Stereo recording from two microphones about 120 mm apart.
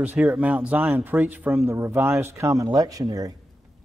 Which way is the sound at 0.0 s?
15° right (ahead or behind).